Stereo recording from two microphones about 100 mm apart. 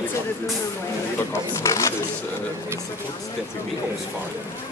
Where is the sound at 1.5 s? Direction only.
30° left (ahead or behind).